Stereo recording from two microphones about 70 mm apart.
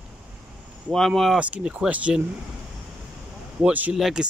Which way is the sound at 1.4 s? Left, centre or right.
Centre.